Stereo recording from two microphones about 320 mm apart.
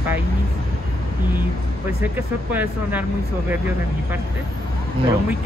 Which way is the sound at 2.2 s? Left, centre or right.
Centre.